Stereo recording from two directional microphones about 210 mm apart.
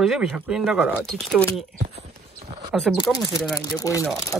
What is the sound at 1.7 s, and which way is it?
Clip-clop, 35° right (ahead or behind).